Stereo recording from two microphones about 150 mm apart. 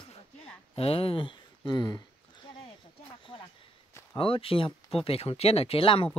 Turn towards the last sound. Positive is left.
turn(degrees=40)  # may be behind; listen again after turning